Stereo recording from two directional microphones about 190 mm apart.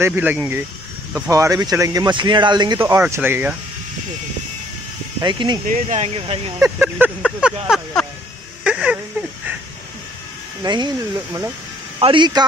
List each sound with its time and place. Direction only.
0.0 s speech: 10° right (ahead or behind)
5.2 s speech: 25° right (ahead or behind)
5.7 s speech: 35° right (ahead or behind)
6.6 s speech: 10° right (ahead or behind)
7.2 s speech: centre (ahead or behind)
8.6 s a sound: 5° right (ahead or behind)
10.6 s speech: 25° right (ahead or behind)
12.0 s speech: 25° right (ahead or behind)